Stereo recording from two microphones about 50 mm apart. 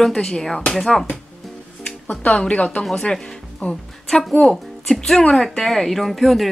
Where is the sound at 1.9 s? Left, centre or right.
Left.